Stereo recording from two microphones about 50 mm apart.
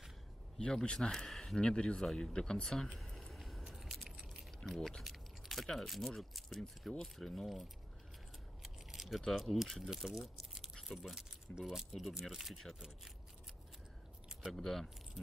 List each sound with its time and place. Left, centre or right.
0.6 s speech: centre
1.6 s speech: left; by 3.3 s centre
3.3 s keys jangling: centre
4.7 s speech: centre
8.6 s keys jangling: centre
9.2 s speech: centre
9.8 s speech: centre
14.6 s speech: centre